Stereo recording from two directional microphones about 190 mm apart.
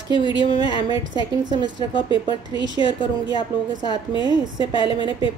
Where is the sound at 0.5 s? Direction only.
20° right (ahead or behind).